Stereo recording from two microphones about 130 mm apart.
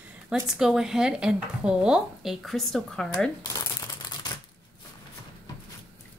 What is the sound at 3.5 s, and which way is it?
Typewriter, 30° left (ahead or behind).